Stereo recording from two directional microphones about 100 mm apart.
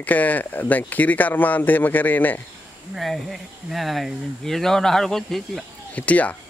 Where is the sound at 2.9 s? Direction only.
Centre (ahead or behind).